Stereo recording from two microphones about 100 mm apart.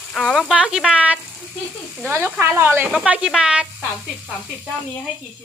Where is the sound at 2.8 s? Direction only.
10° right (ahead or behind).